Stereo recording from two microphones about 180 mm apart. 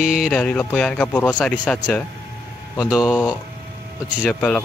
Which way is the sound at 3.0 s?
20° left (ahead or behind).